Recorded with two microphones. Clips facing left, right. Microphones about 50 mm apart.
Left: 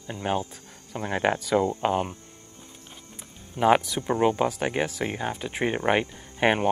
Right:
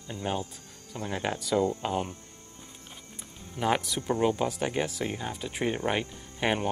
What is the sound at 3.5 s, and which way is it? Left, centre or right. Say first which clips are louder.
Speech: left 7 dB; centre.